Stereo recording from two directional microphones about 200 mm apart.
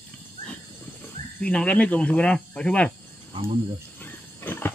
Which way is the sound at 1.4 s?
5° left (ahead or behind).